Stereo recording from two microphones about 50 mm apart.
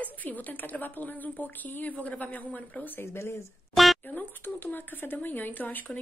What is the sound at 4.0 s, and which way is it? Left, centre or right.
Speech, left.